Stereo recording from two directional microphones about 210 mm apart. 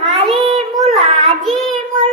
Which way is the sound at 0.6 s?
Centre (ahead or behind).